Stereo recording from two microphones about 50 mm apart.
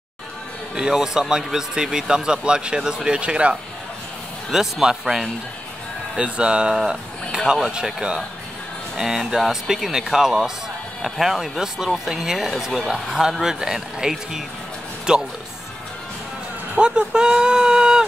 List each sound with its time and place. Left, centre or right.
0.7 s speech: centre
4.5 s speech: centre
6.1 s speech: right
16.7 s speech: centre